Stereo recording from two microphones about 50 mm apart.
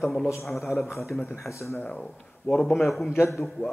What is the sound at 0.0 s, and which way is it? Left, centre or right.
Speech, centre.